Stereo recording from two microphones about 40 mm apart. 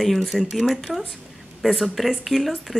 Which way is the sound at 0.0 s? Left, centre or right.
Centre.